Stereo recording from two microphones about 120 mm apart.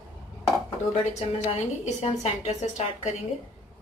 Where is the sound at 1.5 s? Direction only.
60° left (ahead or behind).